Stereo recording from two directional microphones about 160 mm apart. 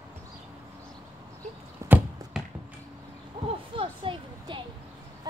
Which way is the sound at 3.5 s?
35° right (ahead or behind).